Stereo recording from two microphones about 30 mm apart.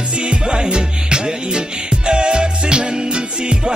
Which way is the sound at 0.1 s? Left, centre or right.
Right.